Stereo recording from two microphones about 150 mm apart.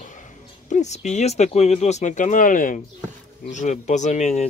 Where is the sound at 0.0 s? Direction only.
55° left (ahead or behind).